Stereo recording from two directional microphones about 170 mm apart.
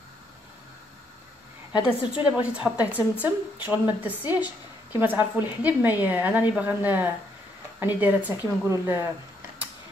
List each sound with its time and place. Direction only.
1.7 s a woman's voice: 25° left (ahead or behind)
2.3 s a woman's voice: 5° right (ahead or behind)